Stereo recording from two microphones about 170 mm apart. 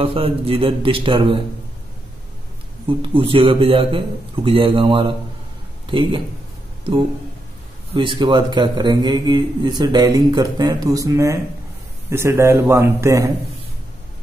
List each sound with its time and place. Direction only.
0.0 s a man's voice: 35° right (ahead or behind)
2.9 s a man's voice: 30° right (ahead or behind)
7.9 s a man's voice: 30° right (ahead or behind)